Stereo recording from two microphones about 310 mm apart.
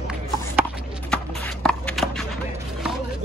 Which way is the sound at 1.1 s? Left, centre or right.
Centre.